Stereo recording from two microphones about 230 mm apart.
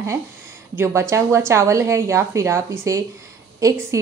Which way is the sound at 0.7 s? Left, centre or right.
Centre.